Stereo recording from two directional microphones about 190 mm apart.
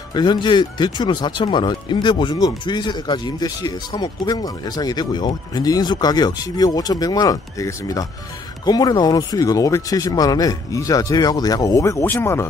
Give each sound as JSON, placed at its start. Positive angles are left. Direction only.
{"t": 0.1, "sound": "speech", "side_deg": 25}